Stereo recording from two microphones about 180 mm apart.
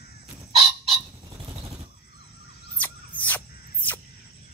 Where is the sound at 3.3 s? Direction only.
10° left (ahead or behind).